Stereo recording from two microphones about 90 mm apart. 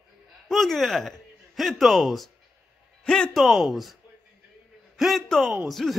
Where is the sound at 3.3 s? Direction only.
Centre (ahead or behind).